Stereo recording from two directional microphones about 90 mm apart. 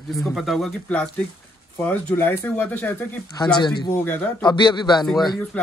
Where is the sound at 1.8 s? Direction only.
20° left (ahead or behind).